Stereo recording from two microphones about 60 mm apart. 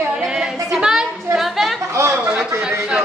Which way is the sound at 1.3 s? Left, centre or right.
Centre.